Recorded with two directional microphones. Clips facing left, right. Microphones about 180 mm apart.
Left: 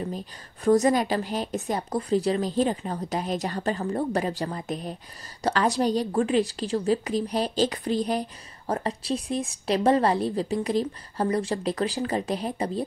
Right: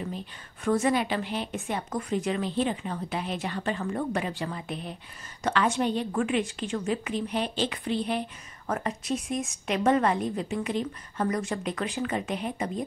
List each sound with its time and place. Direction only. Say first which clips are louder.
0.7 s a woman's voice: left 4 dB; 40° left (ahead or behind)